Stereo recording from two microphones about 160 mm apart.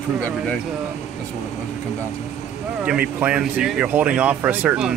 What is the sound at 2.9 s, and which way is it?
Speech, 5° right (ahead or behind).